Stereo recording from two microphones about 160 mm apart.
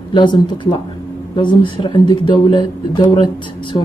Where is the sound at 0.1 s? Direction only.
30° left (ahead or behind).